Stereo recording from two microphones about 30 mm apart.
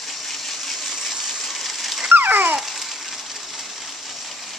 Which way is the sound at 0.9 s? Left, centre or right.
Centre.